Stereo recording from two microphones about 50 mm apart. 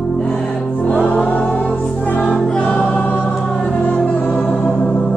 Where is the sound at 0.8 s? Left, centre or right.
Left.